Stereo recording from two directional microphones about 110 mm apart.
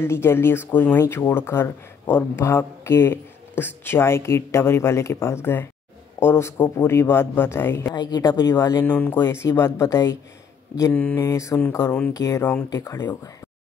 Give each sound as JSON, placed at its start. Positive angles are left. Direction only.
{"t": 0.0, "sound": "speech", "side_deg": 20}
{"t": 7.9, "sound": "speech", "side_deg": 40}
{"t": 8.8, "sound": "speech", "side_deg": 15}
{"t": 10.9, "sound": "speech", "side_deg": 15}
{"t": 11.2, "sound": "speech", "side_deg": 25}